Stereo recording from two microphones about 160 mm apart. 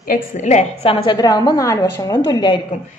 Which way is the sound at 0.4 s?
45° left (ahead or behind).